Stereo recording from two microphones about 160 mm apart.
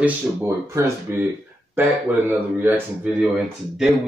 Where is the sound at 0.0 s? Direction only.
15° right (ahead or behind).